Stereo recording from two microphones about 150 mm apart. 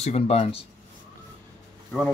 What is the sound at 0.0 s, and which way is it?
Speech, 45° left (ahead or behind).